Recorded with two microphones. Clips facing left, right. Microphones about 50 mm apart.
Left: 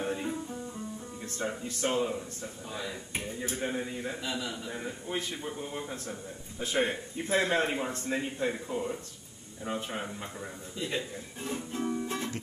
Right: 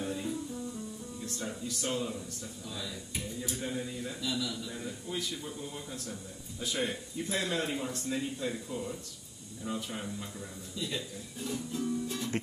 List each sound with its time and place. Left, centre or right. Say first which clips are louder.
0.0 s a man's voice: left 2 dB; left